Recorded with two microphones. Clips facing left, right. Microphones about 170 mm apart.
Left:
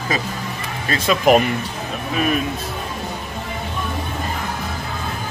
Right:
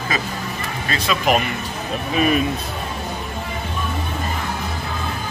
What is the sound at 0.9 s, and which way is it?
Speech, 50° left (ahead or behind).